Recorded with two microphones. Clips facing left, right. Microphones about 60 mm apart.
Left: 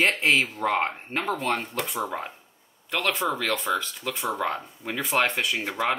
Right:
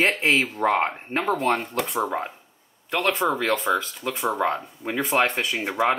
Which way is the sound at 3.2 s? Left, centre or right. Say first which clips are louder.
Right 4 dB; centre.